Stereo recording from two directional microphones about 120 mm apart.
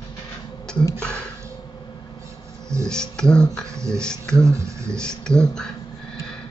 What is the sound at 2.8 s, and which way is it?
Speech, 5° left (ahead or behind).